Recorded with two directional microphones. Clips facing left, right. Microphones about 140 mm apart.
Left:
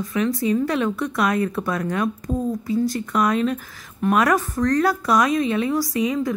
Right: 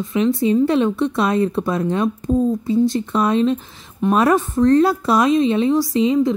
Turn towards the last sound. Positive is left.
turn(degrees=-25)  # may be behind; listen again after turning